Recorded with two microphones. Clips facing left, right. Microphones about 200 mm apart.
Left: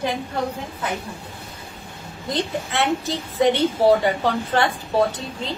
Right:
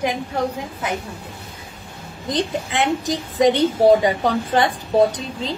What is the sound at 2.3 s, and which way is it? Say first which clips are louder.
A woman's voice: right 2 dB; 15° right (ahead or behind).